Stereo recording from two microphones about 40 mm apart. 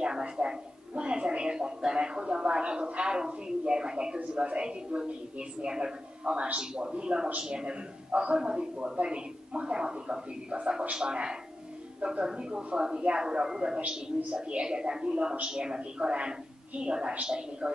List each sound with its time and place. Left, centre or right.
0.0 s a woman's voice: right
6.6 s a woman's voice: right
8.1 s a man's voice: right